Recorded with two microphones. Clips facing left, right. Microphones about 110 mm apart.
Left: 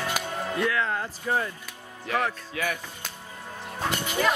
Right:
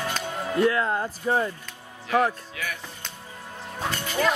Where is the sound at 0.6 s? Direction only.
30° right (ahead or behind).